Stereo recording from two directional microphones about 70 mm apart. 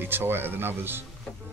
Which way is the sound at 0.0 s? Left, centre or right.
Right.